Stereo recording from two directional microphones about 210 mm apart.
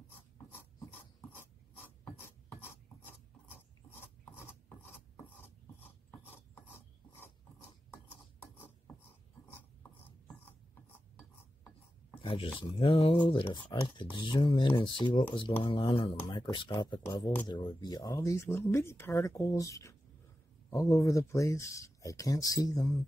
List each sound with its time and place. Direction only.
2.1 s filing: 10° left (ahead or behind)
5.8 s ratchet: 10° left (ahead or behind)
9.5 s filing: 10° left (ahead or behind)
10.9 s a sound: 10° left (ahead or behind)
12.2 s speech: 25° left (ahead or behind)